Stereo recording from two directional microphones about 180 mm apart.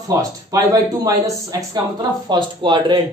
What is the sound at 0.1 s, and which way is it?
Speech, 20° right (ahead or behind).